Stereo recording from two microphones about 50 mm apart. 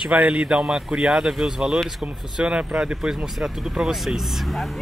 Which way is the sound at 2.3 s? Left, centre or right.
Centre.